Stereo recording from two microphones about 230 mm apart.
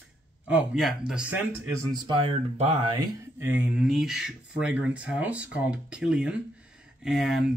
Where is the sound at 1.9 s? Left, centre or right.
Right.